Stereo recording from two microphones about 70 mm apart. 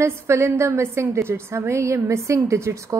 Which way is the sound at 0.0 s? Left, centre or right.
Right.